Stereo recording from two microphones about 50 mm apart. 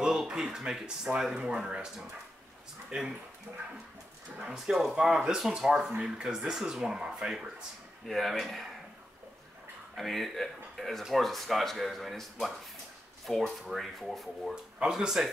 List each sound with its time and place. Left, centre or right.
0.3 s speech: centre
2.9 s speech: centre
4.5 s speech: centre
8.1 s speech: centre
9.9 s speech: centre
14.5 s speech: centre